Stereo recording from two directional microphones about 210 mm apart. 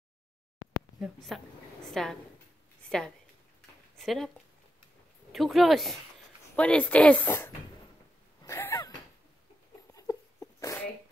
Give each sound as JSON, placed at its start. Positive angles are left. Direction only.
{"t": 0.9, "sound": "a woman's voice", "side_deg": 0}
{"t": 5.3, "sound": "speech", "side_deg": 0}
{"t": 8.4, "sound": "a sound", "side_deg": 15}
{"t": 9.9, "sound": "dog", "side_deg": 15}